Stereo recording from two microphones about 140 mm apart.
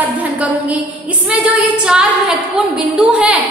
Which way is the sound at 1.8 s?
5° right (ahead or behind).